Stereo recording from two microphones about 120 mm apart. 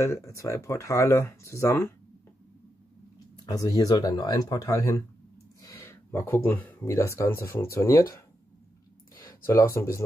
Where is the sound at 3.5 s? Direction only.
30° left (ahead or behind).